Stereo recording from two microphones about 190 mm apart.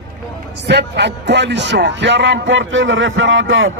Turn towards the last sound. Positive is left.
turn(degrees=-85)